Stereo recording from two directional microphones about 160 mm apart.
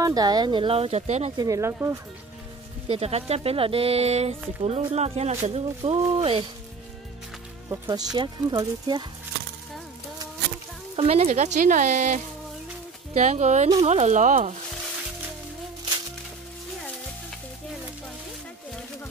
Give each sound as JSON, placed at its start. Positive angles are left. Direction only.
{"t": 0.0, "sound": "speech", "side_deg": -25}
{"t": 1.3, "sound": "speech", "side_deg": -20}
{"t": 2.9, "sound": "speech", "side_deg": -40}
{"t": 7.7, "sound": "speech", "side_deg": -20}
{"t": 11.1, "sound": "speech", "side_deg": -45}